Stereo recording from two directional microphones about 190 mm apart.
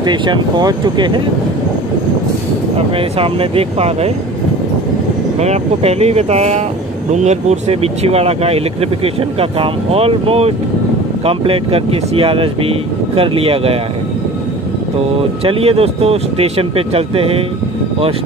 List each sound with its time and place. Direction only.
0.0 s speech: 25° right (ahead or behind)
3.0 s speech: 30° right (ahead or behind)
5.4 s speech: 35° right (ahead or behind)
15.4 s speech: 30° right (ahead or behind)